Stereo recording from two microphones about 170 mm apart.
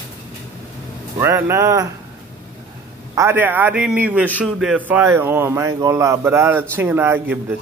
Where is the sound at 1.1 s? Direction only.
15° right (ahead or behind).